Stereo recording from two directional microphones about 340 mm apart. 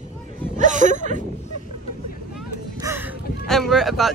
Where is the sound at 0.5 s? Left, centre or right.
Right.